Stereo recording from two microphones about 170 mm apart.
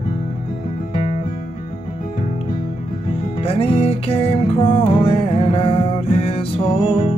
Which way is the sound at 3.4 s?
35° left (ahead or behind).